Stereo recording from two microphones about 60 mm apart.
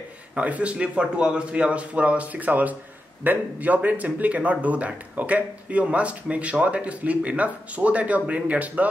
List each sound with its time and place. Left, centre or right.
0.4 s speech: right